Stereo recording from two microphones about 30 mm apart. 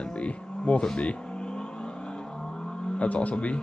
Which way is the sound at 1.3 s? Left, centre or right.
Left.